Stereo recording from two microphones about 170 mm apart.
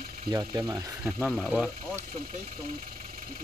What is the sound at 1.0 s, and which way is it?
Speech, centre (ahead or behind).